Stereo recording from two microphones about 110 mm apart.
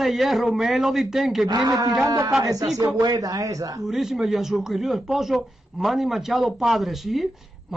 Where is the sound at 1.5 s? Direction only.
40° right (ahead or behind).